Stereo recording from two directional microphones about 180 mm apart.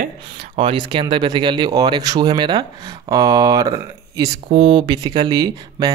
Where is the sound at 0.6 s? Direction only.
30° right (ahead or behind).